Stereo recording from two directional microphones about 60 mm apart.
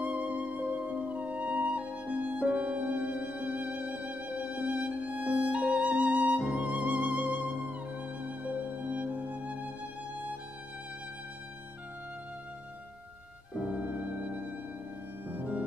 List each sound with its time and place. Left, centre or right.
0.0 s music: right
13.6 s music: right
15.2 s music: right